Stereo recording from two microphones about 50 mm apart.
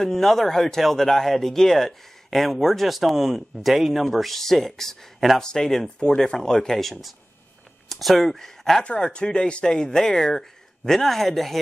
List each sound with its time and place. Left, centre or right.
0.0 s speech: centre
8.8 s speech: centre